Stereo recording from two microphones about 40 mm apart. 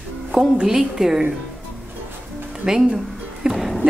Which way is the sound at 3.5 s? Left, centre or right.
Centre.